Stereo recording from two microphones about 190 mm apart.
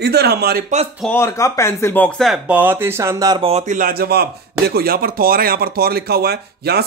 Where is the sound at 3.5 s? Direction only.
40° right (ahead or behind).